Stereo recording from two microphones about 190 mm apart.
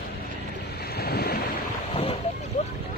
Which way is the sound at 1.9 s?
30° left (ahead or behind).